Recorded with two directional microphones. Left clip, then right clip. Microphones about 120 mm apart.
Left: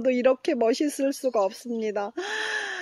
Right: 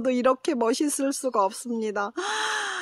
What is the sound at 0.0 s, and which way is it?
Speech, 10° right (ahead or behind).